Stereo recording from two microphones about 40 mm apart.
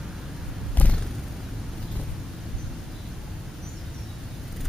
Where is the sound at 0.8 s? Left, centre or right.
Left.